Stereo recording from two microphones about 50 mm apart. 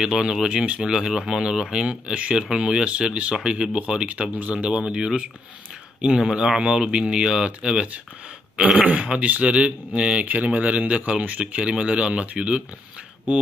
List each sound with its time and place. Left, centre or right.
0.0 s speech: centre
1.9 s speech: right